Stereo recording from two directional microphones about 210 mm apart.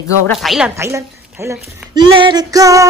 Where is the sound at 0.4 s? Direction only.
Centre (ahead or behind).